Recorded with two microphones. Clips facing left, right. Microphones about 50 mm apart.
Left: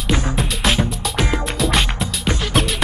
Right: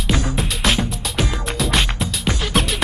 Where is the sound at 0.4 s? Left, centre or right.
Centre.